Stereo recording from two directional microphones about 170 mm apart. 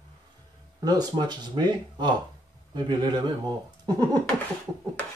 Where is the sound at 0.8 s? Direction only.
25° right (ahead or behind).